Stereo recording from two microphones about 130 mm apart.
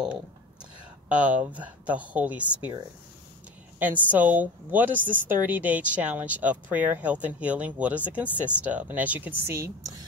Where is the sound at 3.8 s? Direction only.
10° right (ahead or behind).